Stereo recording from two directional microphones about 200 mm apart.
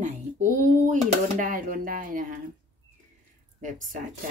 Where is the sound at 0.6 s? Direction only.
40° right (ahead or behind).